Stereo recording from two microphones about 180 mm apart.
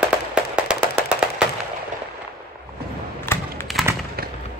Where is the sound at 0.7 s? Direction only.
5° right (ahead or behind).